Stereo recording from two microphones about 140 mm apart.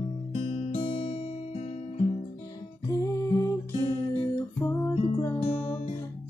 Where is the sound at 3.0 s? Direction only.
20° left (ahead or behind).